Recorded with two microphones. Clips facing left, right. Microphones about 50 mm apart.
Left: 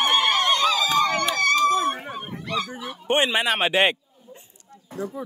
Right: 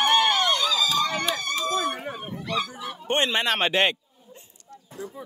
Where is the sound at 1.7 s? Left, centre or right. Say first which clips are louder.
Left 4 dB; left.